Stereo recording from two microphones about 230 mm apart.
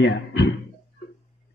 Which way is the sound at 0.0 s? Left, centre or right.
Left.